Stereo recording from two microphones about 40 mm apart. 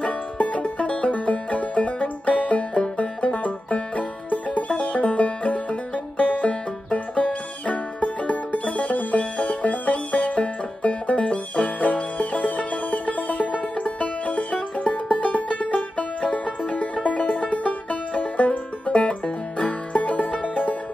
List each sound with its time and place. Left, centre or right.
0.4 s music: left
10.1 s banjo: left
15.7 s music: left